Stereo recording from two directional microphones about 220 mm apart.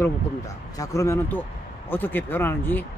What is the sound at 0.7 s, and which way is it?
Speech, 15° left (ahead or behind).